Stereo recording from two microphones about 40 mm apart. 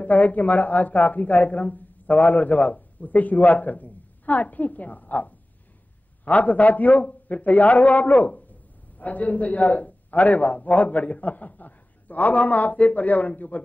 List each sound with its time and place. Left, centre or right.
0.0 s a woman's voice: left